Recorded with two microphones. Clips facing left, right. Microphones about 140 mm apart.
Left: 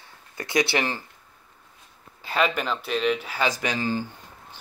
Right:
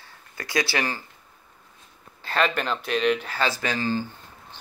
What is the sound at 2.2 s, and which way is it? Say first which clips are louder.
Speech: even; 5° left (ahead or behind).